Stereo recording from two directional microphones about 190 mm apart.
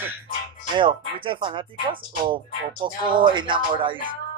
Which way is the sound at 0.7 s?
25° right (ahead or behind).